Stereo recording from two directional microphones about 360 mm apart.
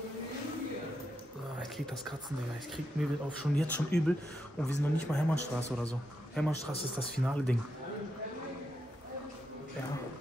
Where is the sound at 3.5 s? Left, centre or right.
Centre.